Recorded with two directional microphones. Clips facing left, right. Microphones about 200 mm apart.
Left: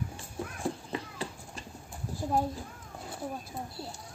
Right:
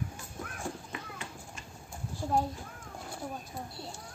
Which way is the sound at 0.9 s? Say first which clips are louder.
Left 6 dB; 35° left (ahead or behind).